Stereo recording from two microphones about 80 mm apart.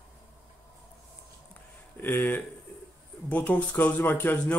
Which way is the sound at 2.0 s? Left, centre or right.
Left.